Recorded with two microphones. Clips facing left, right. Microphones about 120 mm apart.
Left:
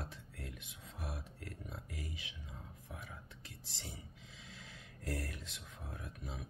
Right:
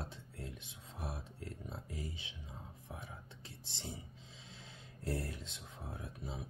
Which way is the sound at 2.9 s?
25° right (ahead or behind).